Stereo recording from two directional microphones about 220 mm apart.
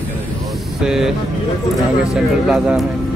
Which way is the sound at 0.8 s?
Centre (ahead or behind).